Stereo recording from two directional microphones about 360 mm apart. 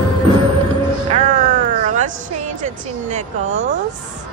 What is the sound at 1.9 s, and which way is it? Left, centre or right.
Music, centre.